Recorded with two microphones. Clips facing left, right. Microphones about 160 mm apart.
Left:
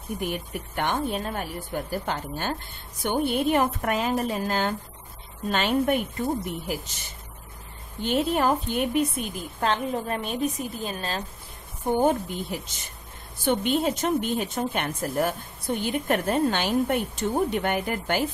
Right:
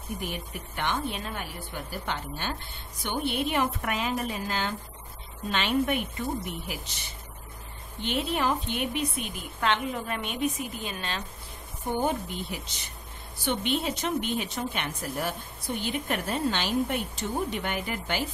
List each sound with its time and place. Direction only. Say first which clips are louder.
0.7 s a woman's voice: left 4 dB; 50° left (ahead or behind)
8.0 s a woman's voice: left 5 dB; 45° left (ahead or behind)